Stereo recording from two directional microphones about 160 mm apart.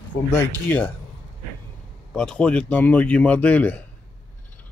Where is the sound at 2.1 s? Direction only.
5° left (ahead or behind).